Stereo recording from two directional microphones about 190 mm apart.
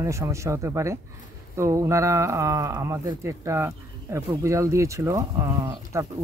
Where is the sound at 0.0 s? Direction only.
15° right (ahead or behind).